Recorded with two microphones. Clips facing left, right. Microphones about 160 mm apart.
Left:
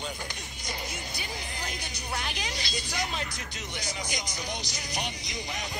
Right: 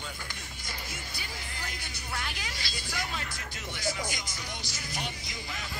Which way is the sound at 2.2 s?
20° left (ahead or behind).